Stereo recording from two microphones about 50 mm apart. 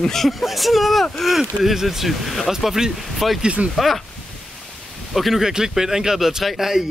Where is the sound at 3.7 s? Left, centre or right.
Centre.